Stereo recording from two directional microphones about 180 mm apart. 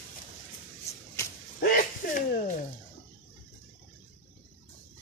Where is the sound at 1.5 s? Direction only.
50° left (ahead or behind).